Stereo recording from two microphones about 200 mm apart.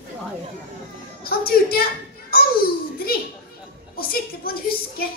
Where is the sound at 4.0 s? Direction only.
50° left (ahead or behind).